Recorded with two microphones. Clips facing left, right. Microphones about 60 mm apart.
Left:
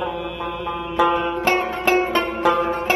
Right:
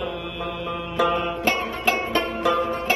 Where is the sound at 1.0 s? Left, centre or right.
Centre.